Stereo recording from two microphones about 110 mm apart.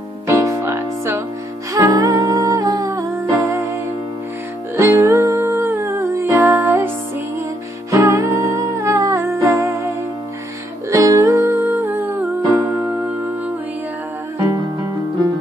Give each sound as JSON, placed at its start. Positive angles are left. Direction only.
{"t": 0.3, "sound": "music", "side_deg": -25}
{"t": 4.7, "sound": "music", "side_deg": -25}
{"t": 7.9, "sound": "music", "side_deg": -30}
{"t": 10.9, "sound": "music", "side_deg": -30}